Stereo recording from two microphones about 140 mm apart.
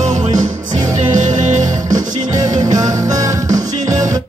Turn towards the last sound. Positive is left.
turn(degrees=-25)  # may be behind; listen again after turning